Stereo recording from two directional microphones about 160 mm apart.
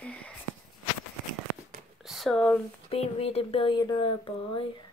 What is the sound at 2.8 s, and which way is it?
Speech, 40° left (ahead or behind).